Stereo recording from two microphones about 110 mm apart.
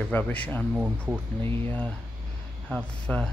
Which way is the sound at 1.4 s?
15° left (ahead or behind).